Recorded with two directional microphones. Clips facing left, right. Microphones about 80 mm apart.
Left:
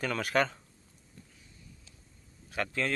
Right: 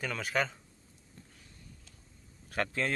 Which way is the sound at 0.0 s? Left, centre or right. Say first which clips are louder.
Left 4 dB; centre.